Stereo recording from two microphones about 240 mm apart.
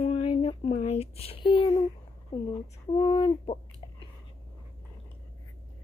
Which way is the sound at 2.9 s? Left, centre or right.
Left.